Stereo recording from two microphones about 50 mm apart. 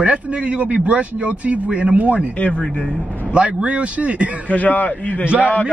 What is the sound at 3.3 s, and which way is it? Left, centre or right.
Speech, right.